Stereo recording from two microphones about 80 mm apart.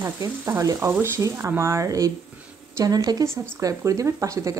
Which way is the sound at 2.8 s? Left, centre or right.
Right.